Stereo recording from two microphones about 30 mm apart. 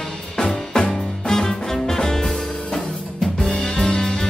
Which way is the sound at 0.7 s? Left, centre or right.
Left.